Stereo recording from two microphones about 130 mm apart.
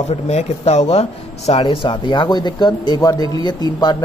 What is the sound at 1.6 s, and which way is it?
Speech, 40° left (ahead or behind).